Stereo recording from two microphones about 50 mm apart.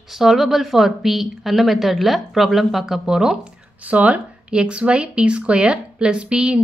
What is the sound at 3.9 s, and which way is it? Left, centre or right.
Speech, right.